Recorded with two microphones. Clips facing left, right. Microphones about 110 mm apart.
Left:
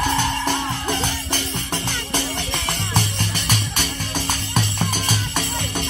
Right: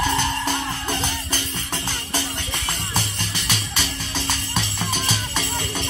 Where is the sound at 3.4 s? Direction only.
50° left (ahead or behind).